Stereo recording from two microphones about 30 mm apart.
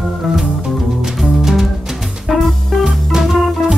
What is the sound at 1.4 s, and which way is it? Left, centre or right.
Music, centre.